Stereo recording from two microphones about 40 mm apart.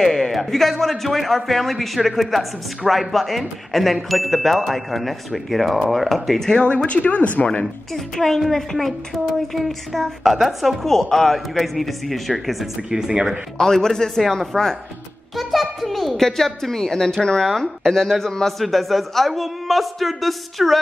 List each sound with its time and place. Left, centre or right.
0.0 s speech: centre
6.5 s speech: left
6.9 s speech: left
7.9 s speech: centre
13.6 s a child's voice: centre